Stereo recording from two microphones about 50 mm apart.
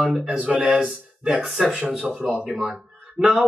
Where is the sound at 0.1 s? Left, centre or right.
Centre.